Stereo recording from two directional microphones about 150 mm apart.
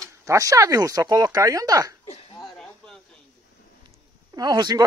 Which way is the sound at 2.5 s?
5° left (ahead or behind).